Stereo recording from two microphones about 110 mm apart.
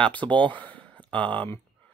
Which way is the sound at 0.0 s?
10° left (ahead or behind).